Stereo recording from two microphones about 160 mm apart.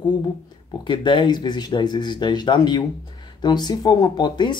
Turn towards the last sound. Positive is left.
turn(degrees=25)  # may be behind; listen again after turning